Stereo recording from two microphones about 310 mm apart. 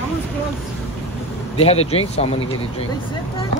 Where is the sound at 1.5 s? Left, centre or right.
Centre.